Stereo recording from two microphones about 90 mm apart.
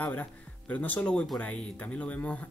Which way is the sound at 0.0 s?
15° left (ahead or behind).